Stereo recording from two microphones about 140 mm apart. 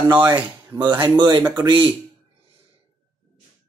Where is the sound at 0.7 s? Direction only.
30° right (ahead or behind).